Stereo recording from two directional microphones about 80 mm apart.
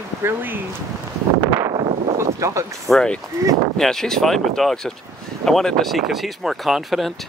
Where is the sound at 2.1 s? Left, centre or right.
Right.